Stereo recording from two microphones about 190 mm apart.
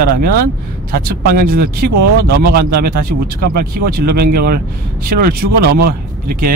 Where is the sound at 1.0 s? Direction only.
50° right (ahead or behind).